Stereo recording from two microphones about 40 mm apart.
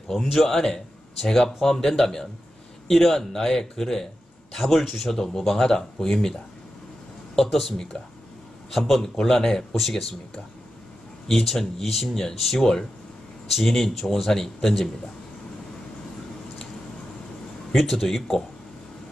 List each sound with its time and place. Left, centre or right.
0.5 s speech: centre
7.3 s speech: centre
7.7 s speech: centre
8.6 s speech: centre
9.2 s speech: centre
9.8 s speech: centre
11.2 s speech: centre
17.7 s speech: centre